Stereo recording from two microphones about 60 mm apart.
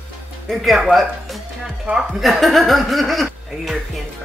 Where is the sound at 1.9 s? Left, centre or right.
Right.